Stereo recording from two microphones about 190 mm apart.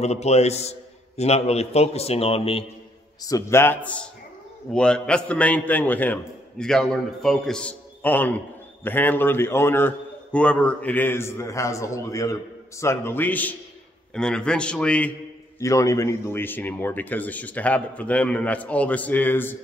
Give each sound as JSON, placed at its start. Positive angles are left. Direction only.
{"t": 0.0, "sound": "a man's voice", "side_deg": 35}
{"t": 3.2, "sound": "a man's voice", "side_deg": 15}